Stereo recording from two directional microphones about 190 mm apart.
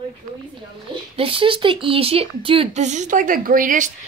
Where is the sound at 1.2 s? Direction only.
30° right (ahead or behind); by 3.9 s 45° right (ahead or behind).